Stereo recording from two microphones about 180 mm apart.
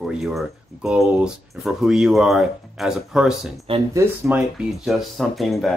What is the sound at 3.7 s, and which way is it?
Speech, 30° right (ahead or behind).